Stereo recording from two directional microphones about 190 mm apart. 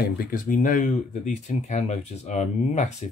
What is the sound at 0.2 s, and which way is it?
Speech, 45° left (ahead or behind).